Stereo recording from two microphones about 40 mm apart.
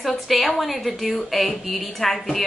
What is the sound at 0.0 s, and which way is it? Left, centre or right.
A woman's voice, centre.